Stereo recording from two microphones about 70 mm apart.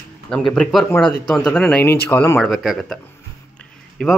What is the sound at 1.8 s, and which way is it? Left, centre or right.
Speech, left.